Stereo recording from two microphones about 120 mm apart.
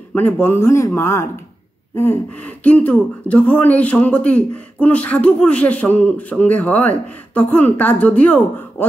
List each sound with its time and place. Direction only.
0.1 s speech: 15° left (ahead or behind)